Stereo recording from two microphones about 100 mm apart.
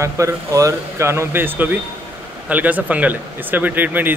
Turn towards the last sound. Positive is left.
turn(degrees=-20)  # may be behind; listen again after turning